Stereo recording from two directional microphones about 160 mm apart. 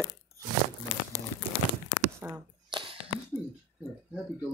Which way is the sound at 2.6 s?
30° right (ahead or behind).